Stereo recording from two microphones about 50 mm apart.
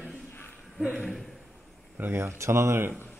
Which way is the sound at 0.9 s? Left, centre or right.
Centre.